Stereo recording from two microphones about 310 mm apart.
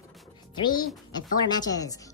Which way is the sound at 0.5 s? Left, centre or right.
Centre.